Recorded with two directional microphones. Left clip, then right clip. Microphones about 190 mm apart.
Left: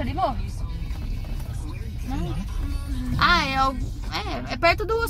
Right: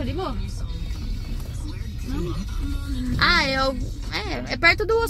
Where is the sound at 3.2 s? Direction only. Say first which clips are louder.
Even; 75° left (ahead or behind).